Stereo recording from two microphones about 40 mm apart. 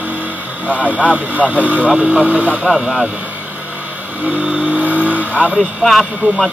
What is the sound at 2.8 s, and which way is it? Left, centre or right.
Speech, right.